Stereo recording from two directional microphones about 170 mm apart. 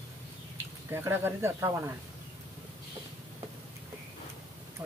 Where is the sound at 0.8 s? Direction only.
15° right (ahead or behind).